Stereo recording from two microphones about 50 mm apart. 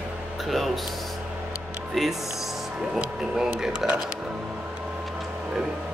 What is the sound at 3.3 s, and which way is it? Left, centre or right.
Speech, centre.